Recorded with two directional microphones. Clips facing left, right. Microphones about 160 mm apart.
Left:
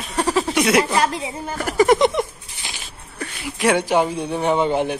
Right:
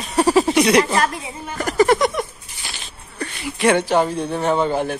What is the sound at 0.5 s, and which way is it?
A man's voice, 5° left (ahead or behind).